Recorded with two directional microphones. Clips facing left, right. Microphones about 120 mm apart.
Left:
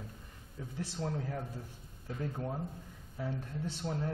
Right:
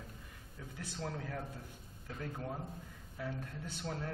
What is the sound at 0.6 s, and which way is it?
A man's voice, 25° left (ahead or behind).